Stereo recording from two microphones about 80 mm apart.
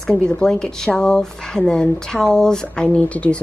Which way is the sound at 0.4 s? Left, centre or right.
Centre.